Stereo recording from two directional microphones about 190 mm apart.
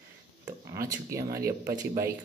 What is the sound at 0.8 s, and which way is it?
Speech, 15° right (ahead or behind).